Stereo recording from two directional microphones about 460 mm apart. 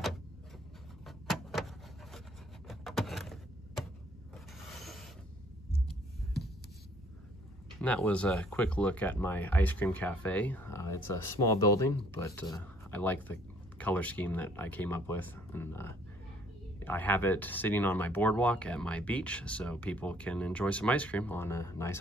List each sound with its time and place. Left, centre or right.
1.0 s vehicle: centre
2.7 s a sound: centre
4.6 s mechanisms: centre
7.8 s speech: centre